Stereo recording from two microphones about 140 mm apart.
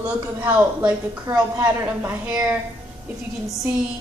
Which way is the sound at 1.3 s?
30° right (ahead or behind).